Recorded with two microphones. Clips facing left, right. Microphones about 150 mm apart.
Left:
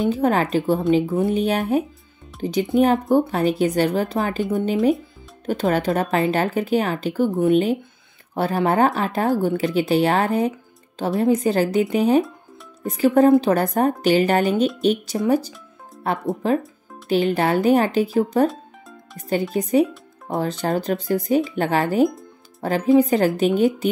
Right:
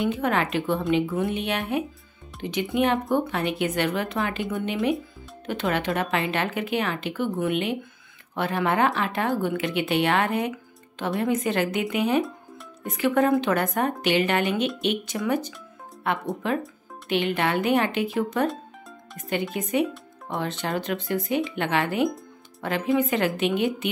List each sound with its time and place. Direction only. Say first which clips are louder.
0.1 s speech: left 5 dB; 35° left (ahead or behind)
5.5 s speech: left 6 dB; 40° left (ahead or behind)